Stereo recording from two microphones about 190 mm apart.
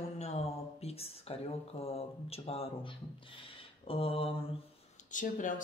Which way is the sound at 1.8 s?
30° left (ahead or behind).